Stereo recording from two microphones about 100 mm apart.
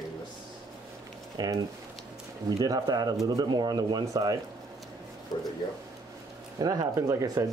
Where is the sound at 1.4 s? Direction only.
40° right (ahead or behind).